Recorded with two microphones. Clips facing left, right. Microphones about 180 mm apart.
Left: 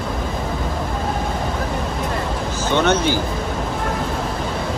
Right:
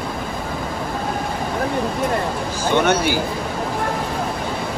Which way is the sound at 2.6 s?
10° right (ahead or behind).